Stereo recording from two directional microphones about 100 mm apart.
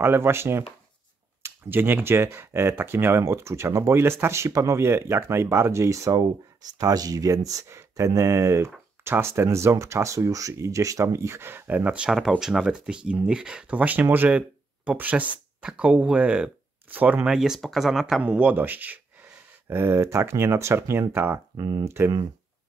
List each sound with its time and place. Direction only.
0.0 s speech: 25° right (ahead or behind); by 18.2 s centre (ahead or behind)
18.2 s speech: 15° right (ahead or behind)
21.5 s speech: 45° right (ahead or behind)
21.8 s speech: 25° right (ahead or behind)